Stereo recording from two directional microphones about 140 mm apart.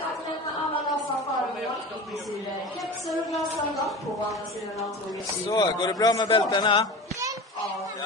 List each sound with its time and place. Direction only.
5.5 s a man's voice: 30° left (ahead or behind)